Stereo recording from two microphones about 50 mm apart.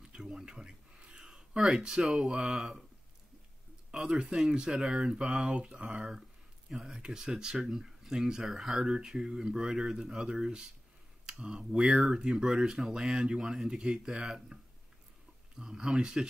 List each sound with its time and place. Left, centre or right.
0.0 s a sound: centre
3.9 s speech: centre
5.5 s speech: right
6.7 s speech: centre